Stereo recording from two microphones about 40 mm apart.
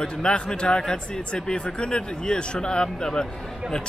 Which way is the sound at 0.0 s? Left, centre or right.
Centre.